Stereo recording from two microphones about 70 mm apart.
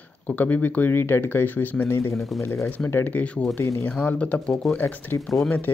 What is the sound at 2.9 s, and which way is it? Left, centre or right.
Speech, left.